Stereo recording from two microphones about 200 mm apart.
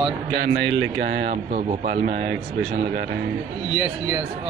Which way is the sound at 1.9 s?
55° right (ahead or behind).